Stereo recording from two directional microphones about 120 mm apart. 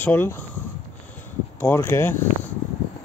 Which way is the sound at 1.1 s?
15° left (ahead or behind).